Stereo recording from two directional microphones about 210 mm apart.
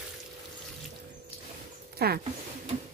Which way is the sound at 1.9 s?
50° right (ahead or behind).